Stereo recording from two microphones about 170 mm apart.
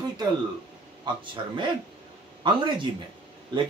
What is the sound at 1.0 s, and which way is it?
Speech, 30° right (ahead or behind).